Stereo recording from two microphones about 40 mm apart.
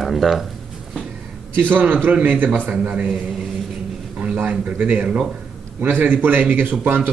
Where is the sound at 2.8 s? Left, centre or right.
Right.